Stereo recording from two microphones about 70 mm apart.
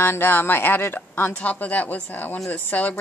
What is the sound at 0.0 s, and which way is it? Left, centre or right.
A woman's voice, left.